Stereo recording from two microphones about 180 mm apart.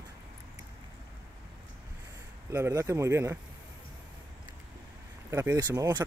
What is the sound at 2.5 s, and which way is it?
Speech, 15° right (ahead or behind).